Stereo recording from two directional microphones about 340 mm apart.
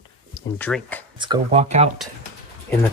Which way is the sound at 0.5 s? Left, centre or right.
Centre.